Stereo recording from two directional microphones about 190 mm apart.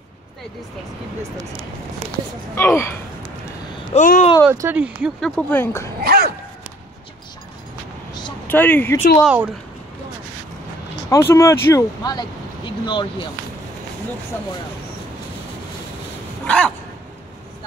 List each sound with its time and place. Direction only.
2.5 s speech: 15° left (ahead or behind)
3.9 s speech: 40° left (ahead or behind)
4.5 s speech: 10° right (ahead or behind); by 5.9 s 10° left (ahead or behind)
5.9 s dog: 55° right (ahead or behind)
8.5 s speech: 10° left (ahead or behind)
9.2 s speech: 5° right (ahead or behind)
11.1 s speech: 15° left (ahead or behind)
16.4 s a sound: 5° left (ahead or behind)